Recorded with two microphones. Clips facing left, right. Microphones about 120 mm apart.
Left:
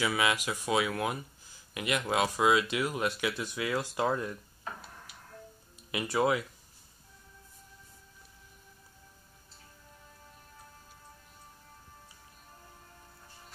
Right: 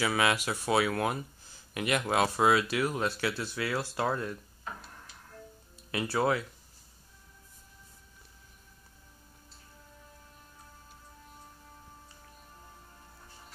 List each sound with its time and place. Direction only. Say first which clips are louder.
0.0 s speech: right 1 dB; 35° right (ahead or behind)
2.5 s speech: right 1 dB; 15° left (ahead or behind)
5.9 s speech: even; 15° left (ahead or behind)